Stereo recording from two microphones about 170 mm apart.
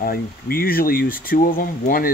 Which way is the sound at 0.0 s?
60° left (ahead or behind).